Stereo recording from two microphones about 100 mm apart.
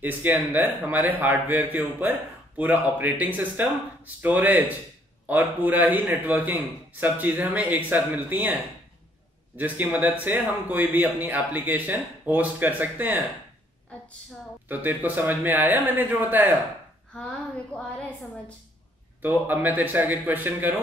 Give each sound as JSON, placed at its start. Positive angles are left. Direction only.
{"t": 0.0, "sound": "a man's voice", "side_deg": -15}
{"t": 9.6, "sound": "a man's voice", "side_deg": -20}
{"t": 14.7, "sound": "a man's voice", "side_deg": -20}
{"t": 17.7, "sound": "a woman's voice", "side_deg": 10}
{"t": 19.2, "sound": "a man's voice", "side_deg": -20}